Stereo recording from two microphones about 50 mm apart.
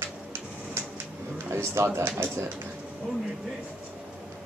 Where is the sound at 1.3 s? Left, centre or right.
Right.